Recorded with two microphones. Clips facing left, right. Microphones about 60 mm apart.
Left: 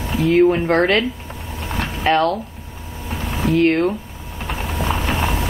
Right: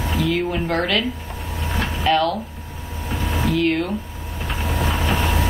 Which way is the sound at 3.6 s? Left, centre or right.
Left.